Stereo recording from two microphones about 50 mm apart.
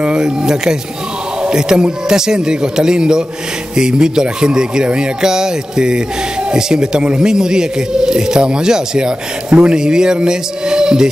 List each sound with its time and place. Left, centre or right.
0.0 s speech: centre